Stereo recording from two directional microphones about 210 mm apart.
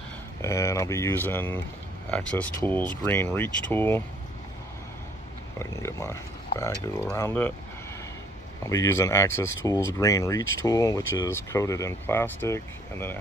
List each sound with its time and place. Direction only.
0.4 s speech: 15° left (ahead or behind)
5.6 s speech: 15° left (ahead or behind)
8.6 s speech: 15° left (ahead or behind)